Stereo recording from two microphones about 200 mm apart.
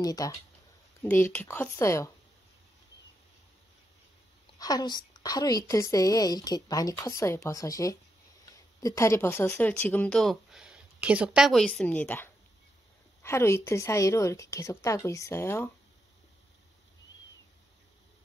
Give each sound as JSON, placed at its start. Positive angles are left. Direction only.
{"t": 0.0, "sound": "speech", "side_deg": 15}
{"t": 4.6, "sound": "speech", "side_deg": 20}